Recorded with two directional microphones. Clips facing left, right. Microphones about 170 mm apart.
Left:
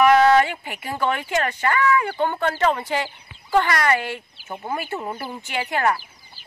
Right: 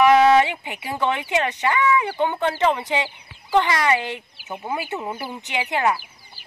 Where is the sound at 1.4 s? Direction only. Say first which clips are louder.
Even; 15° right (ahead or behind).